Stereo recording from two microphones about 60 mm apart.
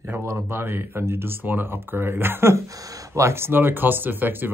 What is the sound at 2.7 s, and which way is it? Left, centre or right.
Speech, right.